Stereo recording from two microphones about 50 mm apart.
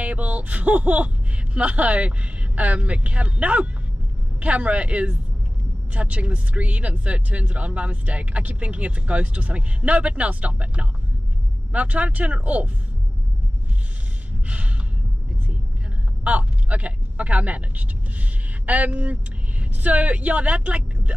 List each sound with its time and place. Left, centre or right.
0.0 s speech: right
16.3 s speech: right